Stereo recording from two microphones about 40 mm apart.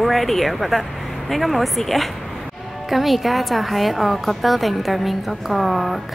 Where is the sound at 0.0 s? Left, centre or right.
Centre.